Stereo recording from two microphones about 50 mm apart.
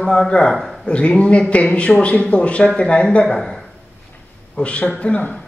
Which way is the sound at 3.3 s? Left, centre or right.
Centre.